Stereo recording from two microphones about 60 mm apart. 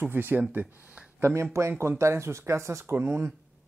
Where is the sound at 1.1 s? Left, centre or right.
Right.